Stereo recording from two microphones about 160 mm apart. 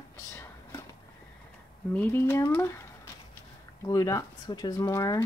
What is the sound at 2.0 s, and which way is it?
Speech, 10° left (ahead or behind).